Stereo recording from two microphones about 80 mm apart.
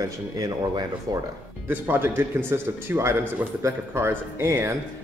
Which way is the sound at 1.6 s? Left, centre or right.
Right.